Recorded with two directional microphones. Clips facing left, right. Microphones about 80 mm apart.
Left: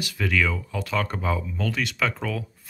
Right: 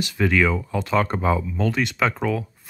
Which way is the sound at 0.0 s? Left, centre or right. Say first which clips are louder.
Right 5 dB; right.